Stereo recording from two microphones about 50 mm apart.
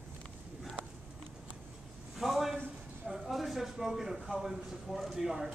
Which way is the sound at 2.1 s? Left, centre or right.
Centre.